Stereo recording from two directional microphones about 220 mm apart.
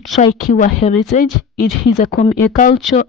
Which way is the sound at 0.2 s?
30° left (ahead or behind).